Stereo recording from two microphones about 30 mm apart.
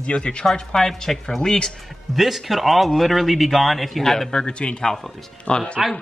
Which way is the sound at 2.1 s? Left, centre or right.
Centre.